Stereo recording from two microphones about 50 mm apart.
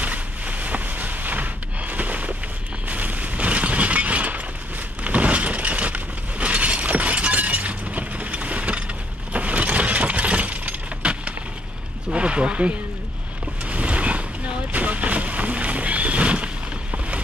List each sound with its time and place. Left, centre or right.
0.0 s a sound: right
2.9 s shatter: right
5.0 s breaking: right
12.1 s a sound: right
13.7 s boat: right
14.7 s vehicle: right